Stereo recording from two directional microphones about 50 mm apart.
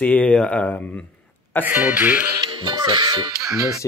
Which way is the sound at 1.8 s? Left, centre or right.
Right.